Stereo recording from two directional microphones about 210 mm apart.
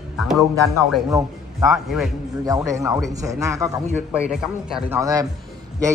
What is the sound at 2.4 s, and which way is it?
A man's voice, 15° right (ahead or behind).